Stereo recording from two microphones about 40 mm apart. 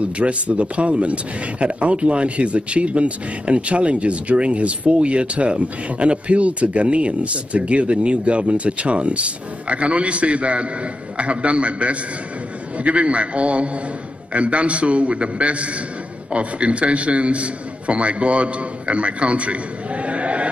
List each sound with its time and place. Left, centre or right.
0.0 s a man's voice: right